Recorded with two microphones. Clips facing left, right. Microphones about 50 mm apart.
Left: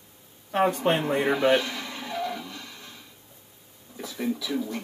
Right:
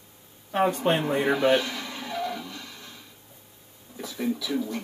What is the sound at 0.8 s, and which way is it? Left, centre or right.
Speech, left.